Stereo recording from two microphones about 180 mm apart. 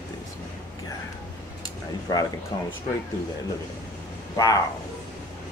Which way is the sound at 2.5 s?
20° left (ahead or behind).